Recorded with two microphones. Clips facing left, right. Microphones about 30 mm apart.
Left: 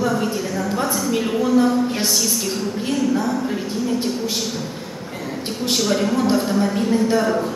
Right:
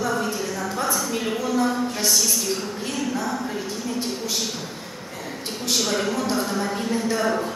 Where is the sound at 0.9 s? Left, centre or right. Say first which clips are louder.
Left 5 dB; centre.